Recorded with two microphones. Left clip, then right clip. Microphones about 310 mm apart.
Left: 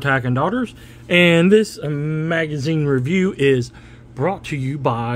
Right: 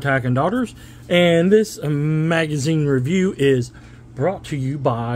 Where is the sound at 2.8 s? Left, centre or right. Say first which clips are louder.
Left 2 dB; centre.